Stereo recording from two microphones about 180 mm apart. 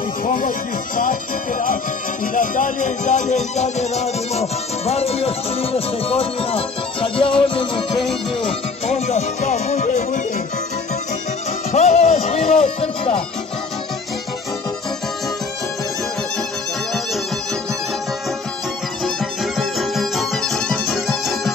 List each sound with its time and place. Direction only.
0.2 s speech: 50° left (ahead or behind)
2.3 s music: 50° left (ahead or behind)
11.7 s music: 35° left (ahead or behind)
19.0 s music: centre (ahead or behind)